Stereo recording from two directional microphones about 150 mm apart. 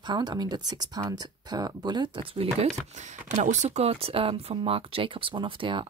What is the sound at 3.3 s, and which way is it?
Speech, 55° right (ahead or behind).